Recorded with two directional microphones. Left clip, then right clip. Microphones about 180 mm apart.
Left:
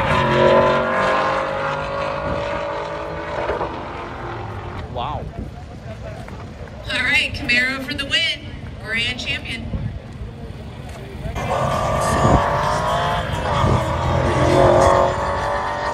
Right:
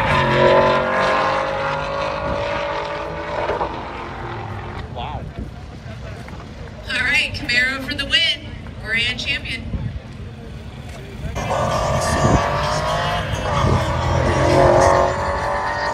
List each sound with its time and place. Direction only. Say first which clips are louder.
0.0 s vehicle: even; 15° left (ahead or behind)
7.0 s a sound: even; 35° left (ahead or behind)
8.8 s vehicle: right 2 dB; 20° left (ahead or behind)
12.0 s vehicle: left 4 dB; 15° left (ahead or behind)
14.6 s music: even; 15° left (ahead or behind)